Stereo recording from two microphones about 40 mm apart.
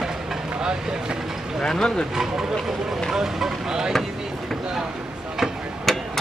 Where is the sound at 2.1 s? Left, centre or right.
Centre.